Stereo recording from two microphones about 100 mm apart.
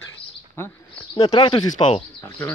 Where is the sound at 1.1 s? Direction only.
65° left (ahead or behind).